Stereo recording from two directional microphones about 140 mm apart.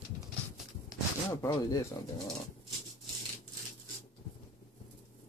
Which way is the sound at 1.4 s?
25° left (ahead or behind).